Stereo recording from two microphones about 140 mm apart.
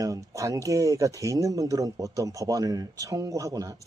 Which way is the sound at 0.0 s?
25° right (ahead or behind).